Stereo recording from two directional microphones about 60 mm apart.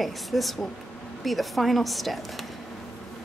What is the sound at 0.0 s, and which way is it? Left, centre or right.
Speech, centre.